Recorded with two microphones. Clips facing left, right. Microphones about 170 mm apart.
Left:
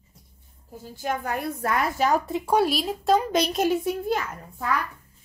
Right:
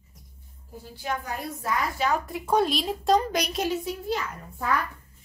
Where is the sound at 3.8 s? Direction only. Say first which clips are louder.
Left 4 dB; 55° left (ahead or behind).